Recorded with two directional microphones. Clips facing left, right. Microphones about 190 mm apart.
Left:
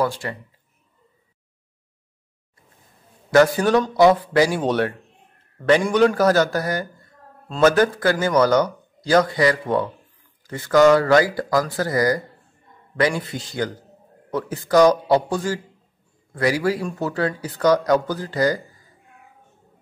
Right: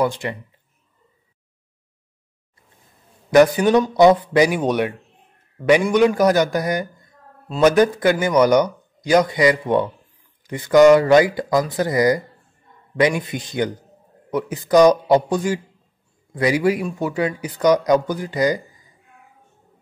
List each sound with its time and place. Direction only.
0.0 s speech: 15° right (ahead or behind)
3.3 s a man's voice: 15° right (ahead or behind)